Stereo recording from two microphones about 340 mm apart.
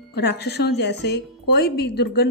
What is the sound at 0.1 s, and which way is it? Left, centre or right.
Speech, left.